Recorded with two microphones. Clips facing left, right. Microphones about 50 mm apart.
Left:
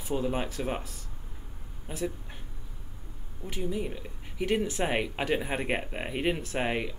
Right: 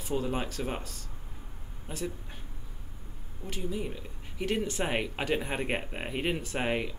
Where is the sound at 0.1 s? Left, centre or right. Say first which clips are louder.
Left 2 dB; centre.